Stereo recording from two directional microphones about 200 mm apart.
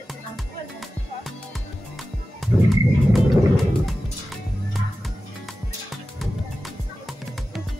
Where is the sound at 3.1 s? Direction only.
Centre (ahead or behind).